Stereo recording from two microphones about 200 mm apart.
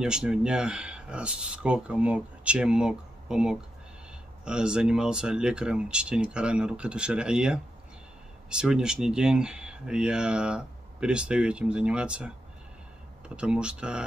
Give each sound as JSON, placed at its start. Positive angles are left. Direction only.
{"t": 0.0, "sound": "speech", "side_deg": -5}
{"t": 13.4, "sound": "speech", "side_deg": -5}